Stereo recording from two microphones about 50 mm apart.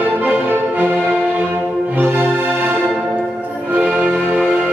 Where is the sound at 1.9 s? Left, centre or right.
Right.